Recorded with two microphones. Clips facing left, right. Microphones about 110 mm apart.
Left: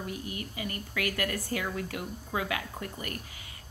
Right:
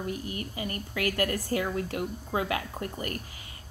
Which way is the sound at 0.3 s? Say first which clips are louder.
Right 2 dB; 35° right (ahead or behind).